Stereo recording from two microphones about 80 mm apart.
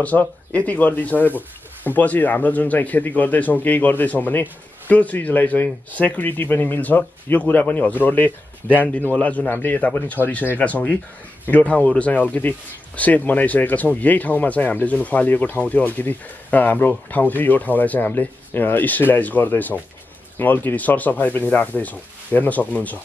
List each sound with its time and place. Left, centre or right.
0.0 s speech: centre